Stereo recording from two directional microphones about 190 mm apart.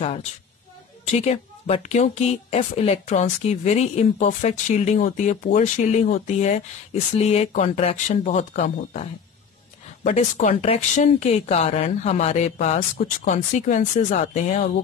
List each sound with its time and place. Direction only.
0.0 s speech: 35° left (ahead or behind)